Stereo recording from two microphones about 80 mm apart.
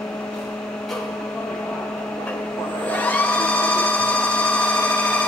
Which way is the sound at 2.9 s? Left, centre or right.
Centre.